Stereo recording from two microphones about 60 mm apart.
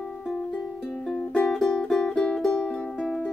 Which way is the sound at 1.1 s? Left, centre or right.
Left.